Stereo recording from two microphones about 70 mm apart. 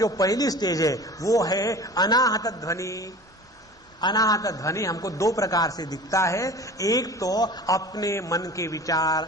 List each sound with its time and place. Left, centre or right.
0.0 s a man's voice: left
4.0 s a man's voice: left
6.1 s a man's voice: left
8.1 s a man's voice: left